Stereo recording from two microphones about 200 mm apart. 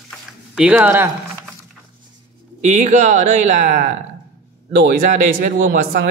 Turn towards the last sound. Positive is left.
turn(degrees=-45)  # may be behind; listen again after turning